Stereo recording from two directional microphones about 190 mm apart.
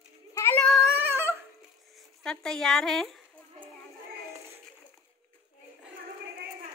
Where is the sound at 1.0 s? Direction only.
15° right (ahead or behind).